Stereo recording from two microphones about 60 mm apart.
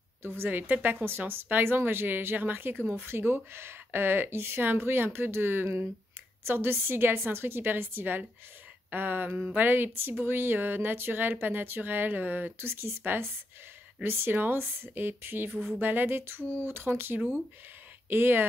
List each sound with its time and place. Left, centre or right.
0.4 s speech: right